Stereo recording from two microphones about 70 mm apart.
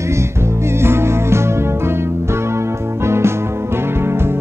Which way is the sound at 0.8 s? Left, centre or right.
Right.